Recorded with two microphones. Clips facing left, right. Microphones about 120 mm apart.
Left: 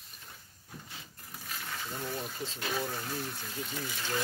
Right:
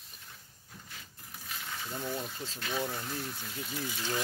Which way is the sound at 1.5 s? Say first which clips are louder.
Left 1 dB; centre (ahead or behind).